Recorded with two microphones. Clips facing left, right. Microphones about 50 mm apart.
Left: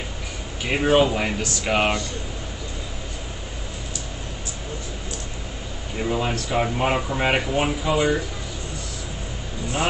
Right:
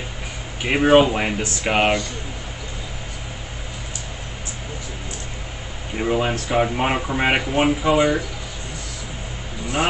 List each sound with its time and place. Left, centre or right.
0.7 s speech: right
5.9 s speech: right